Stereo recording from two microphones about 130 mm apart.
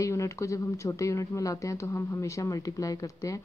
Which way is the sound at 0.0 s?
25° left (ahead or behind).